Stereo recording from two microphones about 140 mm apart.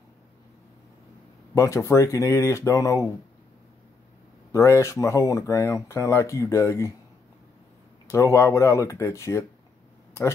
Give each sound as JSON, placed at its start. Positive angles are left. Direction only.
{"t": 1.5, "sound": "speech", "side_deg": 20}
{"t": 4.5, "sound": "speech", "side_deg": 20}
{"t": 8.1, "sound": "speech", "side_deg": 20}